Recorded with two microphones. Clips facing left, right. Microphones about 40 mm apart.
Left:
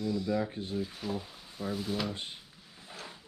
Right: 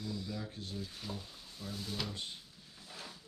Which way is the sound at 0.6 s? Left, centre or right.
Left.